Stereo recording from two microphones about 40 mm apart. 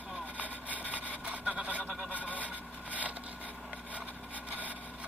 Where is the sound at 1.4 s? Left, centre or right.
Centre.